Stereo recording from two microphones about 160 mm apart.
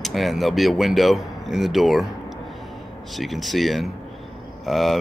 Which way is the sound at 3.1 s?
Centre (ahead or behind).